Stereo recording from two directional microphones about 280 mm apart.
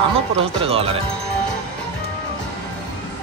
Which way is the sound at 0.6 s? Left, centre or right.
Centre.